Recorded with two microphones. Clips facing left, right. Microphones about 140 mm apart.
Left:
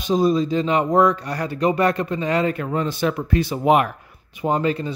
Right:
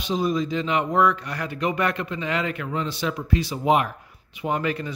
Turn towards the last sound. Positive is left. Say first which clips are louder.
# left 5 dB
turn(degrees=30)  # may be behind; listen again after turning